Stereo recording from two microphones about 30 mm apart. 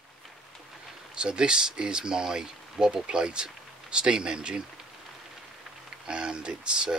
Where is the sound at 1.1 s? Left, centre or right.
Right.